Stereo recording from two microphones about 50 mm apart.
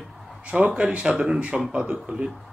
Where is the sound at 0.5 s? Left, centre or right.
Right.